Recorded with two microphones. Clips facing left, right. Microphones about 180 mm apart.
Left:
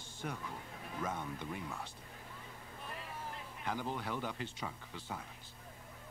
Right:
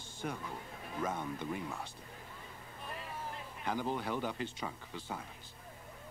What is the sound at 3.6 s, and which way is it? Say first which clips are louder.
Speech: right 3 dB; 20° right (ahead or behind).